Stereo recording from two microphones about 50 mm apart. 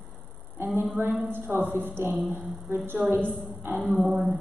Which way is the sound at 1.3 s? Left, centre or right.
Right.